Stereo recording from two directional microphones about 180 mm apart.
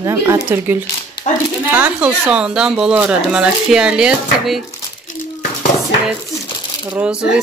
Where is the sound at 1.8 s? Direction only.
10° right (ahead or behind).